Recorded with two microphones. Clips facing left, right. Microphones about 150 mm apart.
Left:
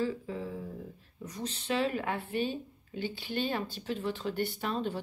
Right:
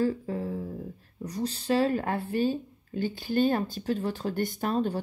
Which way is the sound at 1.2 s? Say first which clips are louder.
Right 7 dB; 35° right (ahead or behind).